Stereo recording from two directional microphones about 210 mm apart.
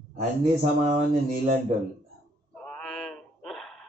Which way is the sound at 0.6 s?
35° right (ahead or behind).